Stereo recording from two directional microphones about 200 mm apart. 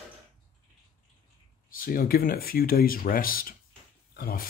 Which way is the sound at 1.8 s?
45° left (ahead or behind).